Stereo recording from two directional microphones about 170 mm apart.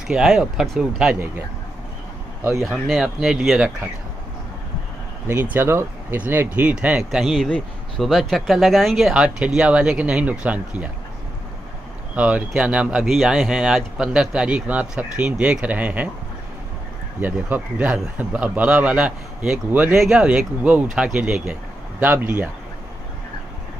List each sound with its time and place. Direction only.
0.1 s speech: 5° right (ahead or behind)
2.6 s speech: centre (ahead or behind)
5.3 s speech: 10° right (ahead or behind)
12.2 s speech: 10° right (ahead or behind)
17.2 s a man's voice: 10° right (ahead or behind)